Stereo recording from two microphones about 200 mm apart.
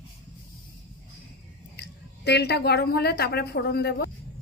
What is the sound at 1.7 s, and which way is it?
A woman's voice, 55° left (ahead or behind).